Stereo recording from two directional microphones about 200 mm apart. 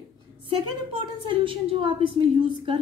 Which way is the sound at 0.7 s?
25° right (ahead or behind).